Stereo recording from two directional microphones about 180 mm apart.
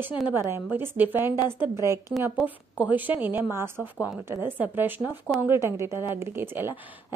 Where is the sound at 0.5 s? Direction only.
10° right (ahead or behind).